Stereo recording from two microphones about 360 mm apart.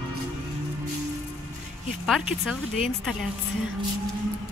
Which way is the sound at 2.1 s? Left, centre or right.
Centre.